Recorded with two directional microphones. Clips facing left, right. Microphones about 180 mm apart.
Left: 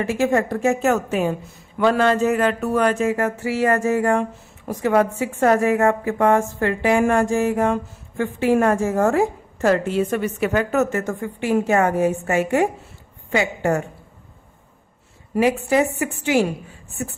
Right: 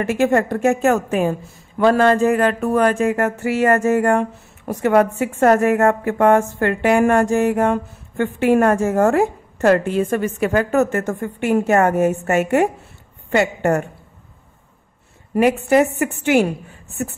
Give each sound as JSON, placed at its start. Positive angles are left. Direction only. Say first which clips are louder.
{"t": 0.2, "sound": "a woman's voice", "louder": "right 3 dB", "side_deg": -60}
{"t": 15.3, "sound": "a woman's voice", "louder": "right 3 dB", "side_deg": -55}